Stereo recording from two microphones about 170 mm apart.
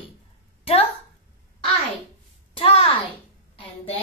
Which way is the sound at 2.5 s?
35° left (ahead or behind).